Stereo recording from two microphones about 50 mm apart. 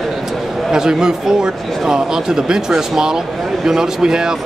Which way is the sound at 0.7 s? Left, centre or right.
Centre.